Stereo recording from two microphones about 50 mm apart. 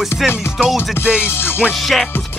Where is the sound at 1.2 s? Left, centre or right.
Left.